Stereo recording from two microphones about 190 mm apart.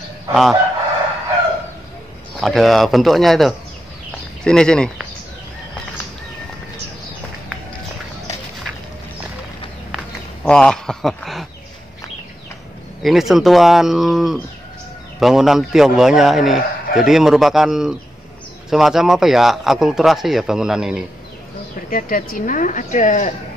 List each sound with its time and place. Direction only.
0.3 s a man's voice: centre (ahead or behind)
2.4 s a man's voice: centre (ahead or behind)
9.9 s a sound: 5° left (ahead or behind)
13.0 s a man's voice: centre (ahead or behind)
21.9 s a woman's voice: 45° left (ahead or behind)